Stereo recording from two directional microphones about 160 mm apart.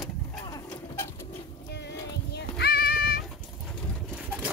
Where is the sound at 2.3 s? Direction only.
90° left; by 3.2 s 75° left (ahead or behind).